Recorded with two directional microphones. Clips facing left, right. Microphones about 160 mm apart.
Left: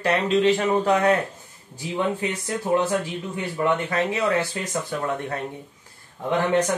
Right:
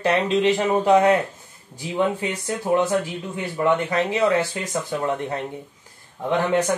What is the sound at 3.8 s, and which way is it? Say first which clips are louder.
Speech: right 3 dB; 20° right (ahead or behind).